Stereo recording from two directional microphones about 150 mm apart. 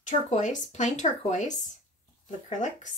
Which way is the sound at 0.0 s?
55° left (ahead or behind).